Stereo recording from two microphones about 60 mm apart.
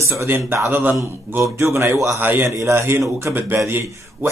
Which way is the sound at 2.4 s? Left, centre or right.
Right.